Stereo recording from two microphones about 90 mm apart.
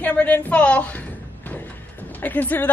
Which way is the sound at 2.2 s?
20° left (ahead or behind).